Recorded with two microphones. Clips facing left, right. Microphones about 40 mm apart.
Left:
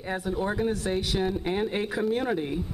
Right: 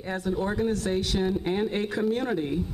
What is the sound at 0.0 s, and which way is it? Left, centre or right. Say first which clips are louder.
A woman's voice: right 1 dB; centre.